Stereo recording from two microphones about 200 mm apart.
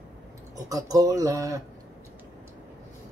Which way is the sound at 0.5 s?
20° right (ahead or behind).